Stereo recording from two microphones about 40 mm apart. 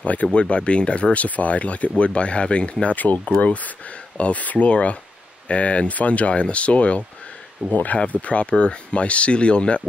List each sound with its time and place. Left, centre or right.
0.0 s speech: left
7.7 s speech: left